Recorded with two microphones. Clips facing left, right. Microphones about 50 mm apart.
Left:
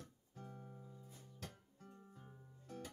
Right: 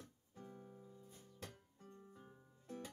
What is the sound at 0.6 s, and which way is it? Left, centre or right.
Music, centre.